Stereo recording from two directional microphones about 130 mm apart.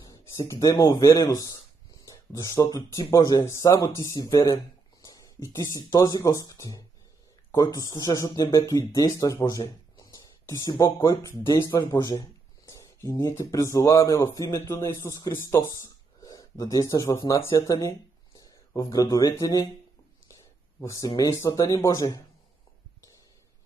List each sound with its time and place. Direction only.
0.0 s speech: 25° left (ahead or behind)
15.8 s a sound: 25° left (ahead or behind)
17.3 s speech: 25° left (ahead or behind)
20.8 s speech: 25° left (ahead or behind)